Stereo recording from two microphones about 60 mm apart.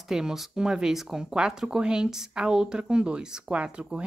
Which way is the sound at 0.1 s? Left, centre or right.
Centre.